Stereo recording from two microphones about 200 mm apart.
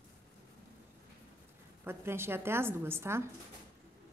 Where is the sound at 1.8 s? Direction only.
10° right (ahead or behind).